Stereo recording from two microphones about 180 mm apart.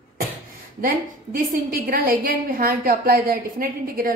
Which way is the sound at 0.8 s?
50° right (ahead or behind).